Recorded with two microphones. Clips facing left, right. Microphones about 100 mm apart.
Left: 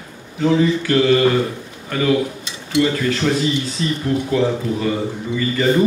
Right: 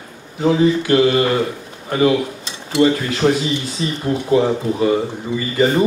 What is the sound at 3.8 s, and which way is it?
Speech, 15° right (ahead or behind).